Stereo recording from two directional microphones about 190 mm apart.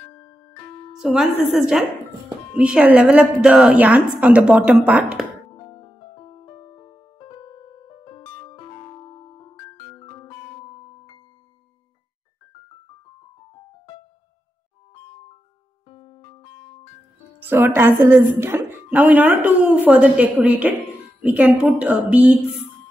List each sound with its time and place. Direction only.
0.1 s music: 20° left (ahead or behind)
0.9 s a woman's voice: centre (ahead or behind)
5.5 s music: 25° left (ahead or behind)
15.9 s keyboard: 30° left (ahead or behind)
17.4 s speech: 10° right (ahead or behind)